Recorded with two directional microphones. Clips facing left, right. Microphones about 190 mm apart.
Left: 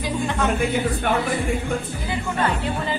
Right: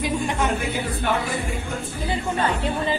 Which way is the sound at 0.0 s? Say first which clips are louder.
Even; 15° right (ahead or behind).